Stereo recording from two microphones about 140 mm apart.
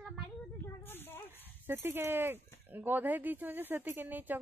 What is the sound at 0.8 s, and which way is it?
Snake, 15° left (ahead or behind).